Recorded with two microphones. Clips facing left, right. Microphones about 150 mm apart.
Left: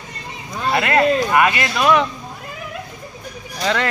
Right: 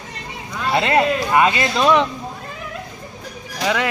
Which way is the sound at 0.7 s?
20° right (ahead or behind).